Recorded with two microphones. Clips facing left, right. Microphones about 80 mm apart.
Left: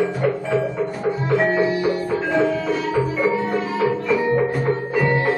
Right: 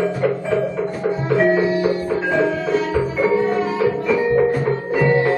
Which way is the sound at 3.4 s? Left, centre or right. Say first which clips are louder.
Right 3 dB; centre.